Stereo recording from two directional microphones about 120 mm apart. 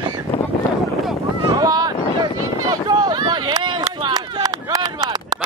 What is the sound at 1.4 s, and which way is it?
Wind noise, 30° right (ahead or behind).